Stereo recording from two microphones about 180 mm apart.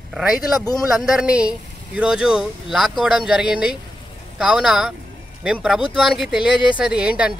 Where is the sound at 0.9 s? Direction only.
5° right (ahead or behind).